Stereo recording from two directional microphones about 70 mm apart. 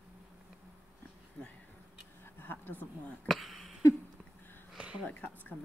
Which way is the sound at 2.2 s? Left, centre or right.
Left.